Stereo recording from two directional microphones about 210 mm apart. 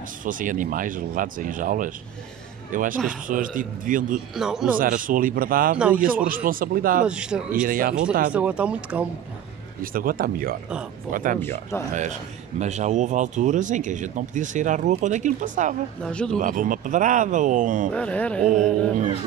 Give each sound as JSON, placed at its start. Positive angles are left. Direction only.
{"t": 0.2, "sound": "a man's voice", "side_deg": -40}
{"t": 4.4, "sound": "speech", "side_deg": -5}
{"t": 4.7, "sound": "a man's voice", "side_deg": -40}
{"t": 5.8, "sound": "speech", "side_deg": -5}
{"t": 6.0, "sound": "a man's voice", "side_deg": -40}
{"t": 7.1, "sound": "speech", "side_deg": -5}
{"t": 7.6, "sound": "speech", "side_deg": -45}
{"t": 8.3, "sound": "speech", "side_deg": -5}
{"t": 9.8, "sound": "speech", "side_deg": -40}
{"t": 11.9, "sound": "a man's voice", "side_deg": -35}
{"t": 16.0, "sound": "speech", "side_deg": 5}
{"t": 16.3, "sound": "a man's voice", "side_deg": -40}
{"t": 17.9, "sound": "speech", "side_deg": 5}